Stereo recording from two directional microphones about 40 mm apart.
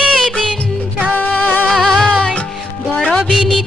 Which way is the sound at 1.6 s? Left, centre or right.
Centre.